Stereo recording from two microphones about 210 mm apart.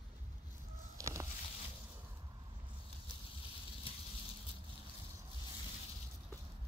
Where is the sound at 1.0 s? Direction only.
15° right (ahead or behind).